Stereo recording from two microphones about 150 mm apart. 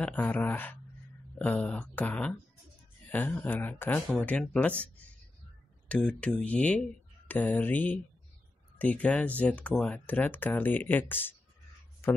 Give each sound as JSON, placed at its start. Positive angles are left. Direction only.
{"t": 0.0, "sound": "speech", "side_deg": 10}